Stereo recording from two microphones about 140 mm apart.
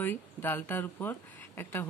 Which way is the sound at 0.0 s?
15° left (ahead or behind).